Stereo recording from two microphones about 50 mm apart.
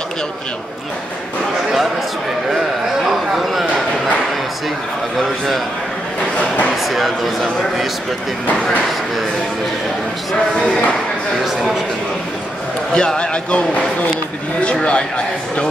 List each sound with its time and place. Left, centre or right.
3.1 s a sound: centre
6.9 s speech: centre
12.9 s speech: centre